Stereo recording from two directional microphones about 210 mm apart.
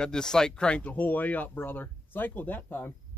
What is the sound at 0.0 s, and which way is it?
Speech, 5° left (ahead or behind).